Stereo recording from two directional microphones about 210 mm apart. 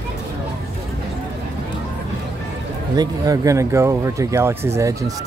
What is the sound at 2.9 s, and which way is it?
Speech, 20° right (ahead or behind).